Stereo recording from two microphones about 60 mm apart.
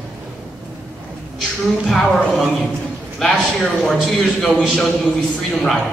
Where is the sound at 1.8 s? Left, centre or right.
Centre.